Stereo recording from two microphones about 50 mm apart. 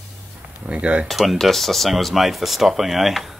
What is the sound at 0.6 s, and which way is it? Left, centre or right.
Speech, right.